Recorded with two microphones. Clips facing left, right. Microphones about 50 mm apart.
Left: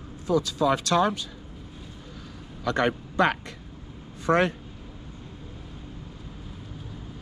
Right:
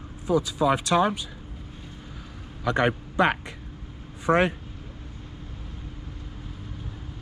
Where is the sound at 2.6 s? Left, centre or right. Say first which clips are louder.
Right 1 dB; centre.